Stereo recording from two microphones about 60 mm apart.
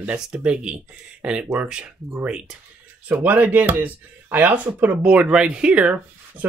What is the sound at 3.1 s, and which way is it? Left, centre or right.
Speech, right.